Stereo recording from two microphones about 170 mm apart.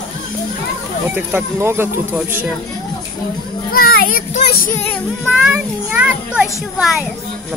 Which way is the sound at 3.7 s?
60° left (ahead or behind).